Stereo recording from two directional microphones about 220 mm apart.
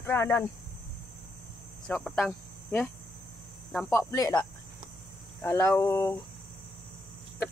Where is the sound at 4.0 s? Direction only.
15° left (ahead or behind).